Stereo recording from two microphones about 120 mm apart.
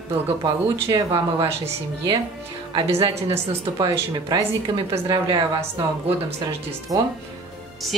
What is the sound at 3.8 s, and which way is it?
A woman's voice, 35° right (ahead or behind).